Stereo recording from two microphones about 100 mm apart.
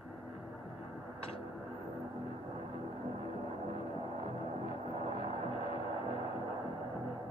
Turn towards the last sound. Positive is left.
turn(degrees=75)  # may be behind; listen again after turning